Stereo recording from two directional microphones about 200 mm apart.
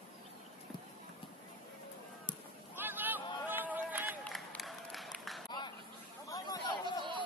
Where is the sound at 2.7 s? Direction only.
10° right (ahead or behind).